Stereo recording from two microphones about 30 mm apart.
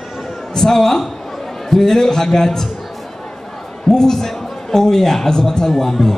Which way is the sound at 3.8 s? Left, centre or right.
Centre.